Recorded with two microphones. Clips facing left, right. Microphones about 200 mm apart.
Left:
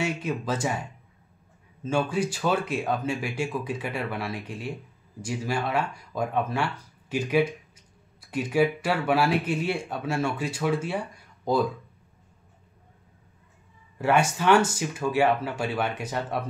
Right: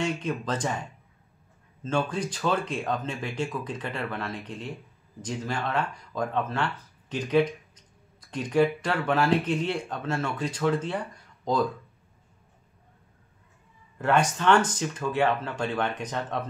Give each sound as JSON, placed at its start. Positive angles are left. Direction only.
{"t": 0.0, "sound": "speech", "side_deg": 10}
{"t": 13.9, "sound": "speech", "side_deg": 10}